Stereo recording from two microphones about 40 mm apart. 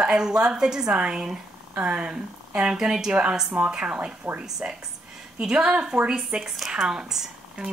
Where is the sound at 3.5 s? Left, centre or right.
Right.